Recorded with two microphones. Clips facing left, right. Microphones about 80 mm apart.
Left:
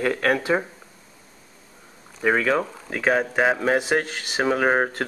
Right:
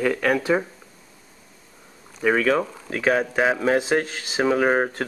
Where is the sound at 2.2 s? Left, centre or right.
Centre.